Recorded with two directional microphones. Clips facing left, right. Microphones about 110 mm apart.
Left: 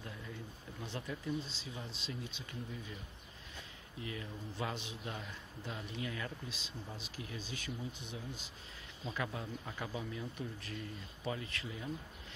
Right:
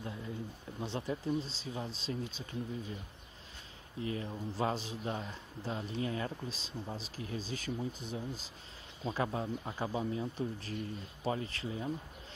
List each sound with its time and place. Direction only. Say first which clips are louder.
0.0 s speech: right 6 dB; 25° right (ahead or behind)
4.0 s speech: right 7 dB; 35° right (ahead or behind)